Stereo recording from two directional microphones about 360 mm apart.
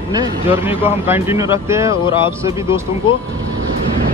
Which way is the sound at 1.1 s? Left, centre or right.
Centre.